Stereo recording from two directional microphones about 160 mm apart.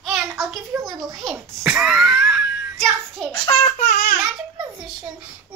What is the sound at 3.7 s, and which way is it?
Child singing, 55° left (ahead or behind).